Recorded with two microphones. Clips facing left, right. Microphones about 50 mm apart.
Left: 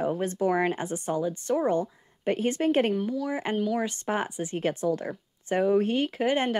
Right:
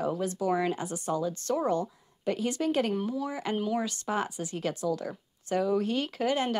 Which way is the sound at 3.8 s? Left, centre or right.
Left.